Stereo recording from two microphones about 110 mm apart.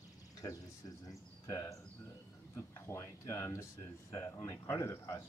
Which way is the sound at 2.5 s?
25° left (ahead or behind).